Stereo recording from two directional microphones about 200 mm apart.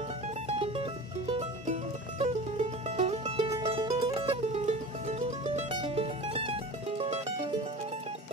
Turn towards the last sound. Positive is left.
turn(degrees=-30)  # may be behind; listen again after turning